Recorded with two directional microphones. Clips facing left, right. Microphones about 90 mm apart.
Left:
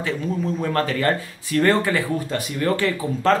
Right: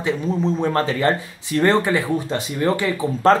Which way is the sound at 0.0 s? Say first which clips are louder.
Right 3 dB; 25° right (ahead or behind).